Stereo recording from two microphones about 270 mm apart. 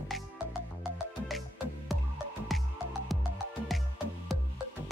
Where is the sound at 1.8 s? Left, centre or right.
Centre.